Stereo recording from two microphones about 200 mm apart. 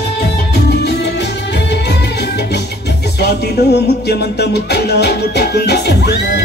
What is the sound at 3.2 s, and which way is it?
Music, 55° left (ahead or behind).